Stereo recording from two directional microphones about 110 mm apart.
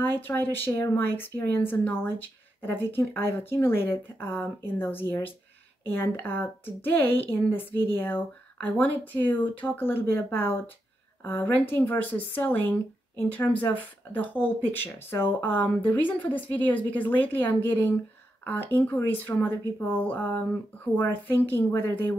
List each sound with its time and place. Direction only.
0.0 s speech: 20° left (ahead or behind)